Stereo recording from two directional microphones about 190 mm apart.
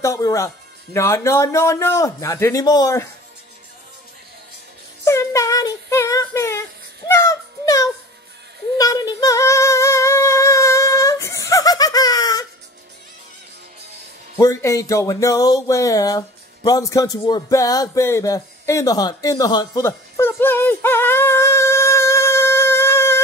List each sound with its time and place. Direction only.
0.0 s speech: 15° left (ahead or behind)
5.0 s synthetic singing: 15° left (ahead or behind)
7.1 s a sound: 15° left (ahead or behind)
8.7 s singing: 20° left (ahead or behind)
14.4 s speech: 15° left (ahead or behind)
19.9 s yodeling: 10° left (ahead or behind)